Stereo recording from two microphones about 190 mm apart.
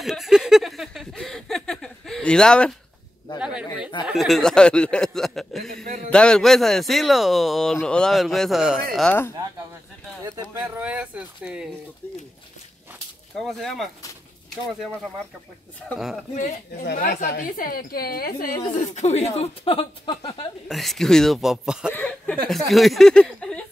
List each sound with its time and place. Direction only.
0.0 s a sound: centre (ahead or behind)
4.1 s a man's voice: centre (ahead or behind)
8.9 s speech: 5° left (ahead or behind)
10.2 s a sound: 15° right (ahead or behind)
13.4 s a man's voice: centre (ahead or behind)
15.9 s a man's voice: centre (ahead or behind)
16.8 s a woman's voice: 50° left (ahead or behind); by 20.4 s 30° left (ahead or behind)
20.6 s a man's voice: centre (ahead or behind)